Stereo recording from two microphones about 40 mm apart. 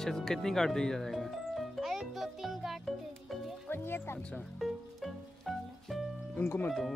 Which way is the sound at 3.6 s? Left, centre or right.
Left.